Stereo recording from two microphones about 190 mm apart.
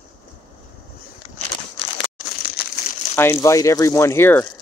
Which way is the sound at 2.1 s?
55° left (ahead or behind).